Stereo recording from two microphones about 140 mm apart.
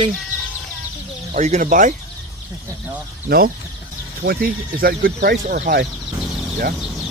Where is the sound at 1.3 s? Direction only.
60° right (ahead or behind).